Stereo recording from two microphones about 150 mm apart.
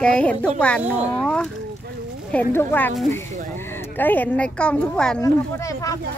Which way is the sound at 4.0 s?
10° left (ahead or behind).